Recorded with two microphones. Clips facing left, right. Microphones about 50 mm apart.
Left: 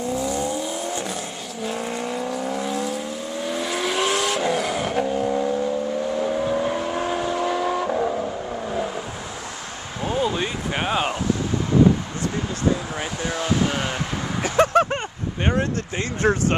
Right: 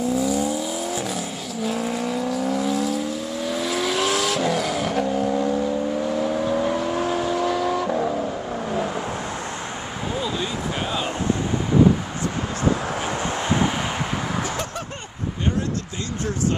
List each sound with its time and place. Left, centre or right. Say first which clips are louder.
0.0 s vehicle: right 2 dB; centre
7.9 s vehicle: even; centre
10.2 s a sound: left 2 dB; left
13.4 s vehicle: even; right
14.6 s a sound: left 13 dB; left
16.2 s speech: left 5 dB; left